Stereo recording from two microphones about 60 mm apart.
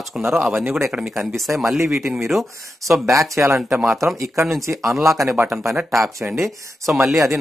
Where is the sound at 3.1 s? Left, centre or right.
Right.